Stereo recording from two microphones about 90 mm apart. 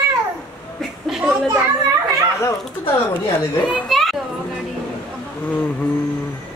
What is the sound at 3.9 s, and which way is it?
Children playing, centre (ahead or behind).